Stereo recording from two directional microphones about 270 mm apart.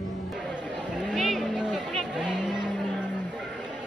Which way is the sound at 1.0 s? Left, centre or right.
Centre.